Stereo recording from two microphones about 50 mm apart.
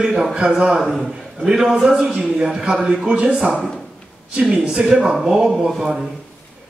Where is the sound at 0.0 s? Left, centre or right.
Centre.